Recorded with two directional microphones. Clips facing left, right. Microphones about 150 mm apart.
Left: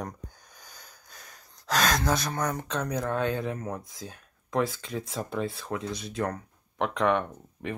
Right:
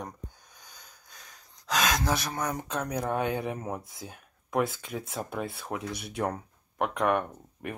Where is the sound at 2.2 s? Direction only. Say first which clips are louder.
Left 2 dB; 10° right (ahead or behind).